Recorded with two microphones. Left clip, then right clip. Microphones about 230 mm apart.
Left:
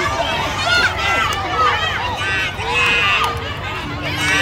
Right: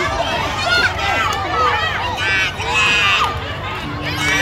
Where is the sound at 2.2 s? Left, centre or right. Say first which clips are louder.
Right 2 dB; right.